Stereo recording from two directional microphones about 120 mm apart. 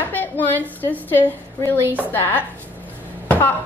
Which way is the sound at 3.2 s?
15° left (ahead or behind).